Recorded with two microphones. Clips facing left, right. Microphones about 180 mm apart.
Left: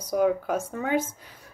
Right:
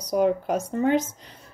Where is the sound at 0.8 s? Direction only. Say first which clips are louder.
Right 7 dB; 55° left (ahead or behind).